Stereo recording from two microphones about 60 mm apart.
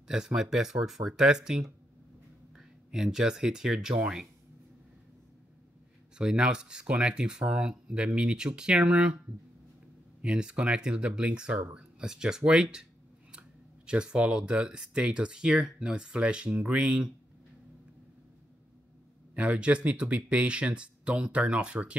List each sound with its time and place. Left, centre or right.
0.1 s speech: centre
6.1 s speech: centre
10.2 s speech: centre
19.3 s speech: right